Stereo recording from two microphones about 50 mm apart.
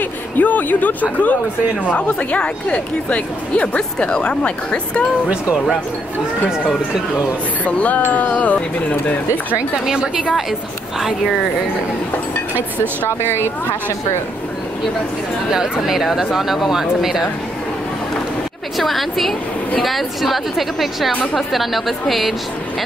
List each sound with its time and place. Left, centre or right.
0.4 s speech: left
7.6 s speech: left
13.2 s speech: left
15.5 s speech: centre
18.8 s a woman's voice: centre